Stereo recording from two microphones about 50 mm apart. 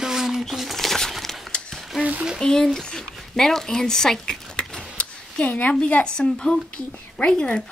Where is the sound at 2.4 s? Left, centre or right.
Centre.